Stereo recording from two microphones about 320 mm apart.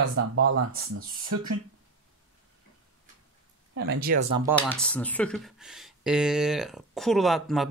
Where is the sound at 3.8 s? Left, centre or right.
Right.